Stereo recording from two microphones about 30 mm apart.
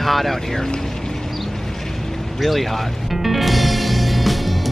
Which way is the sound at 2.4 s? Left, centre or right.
Centre.